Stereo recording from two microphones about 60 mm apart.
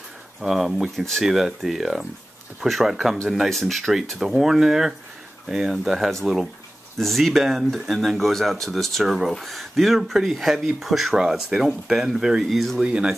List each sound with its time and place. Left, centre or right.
0.4 s speech: centre
12.8 s speech: centre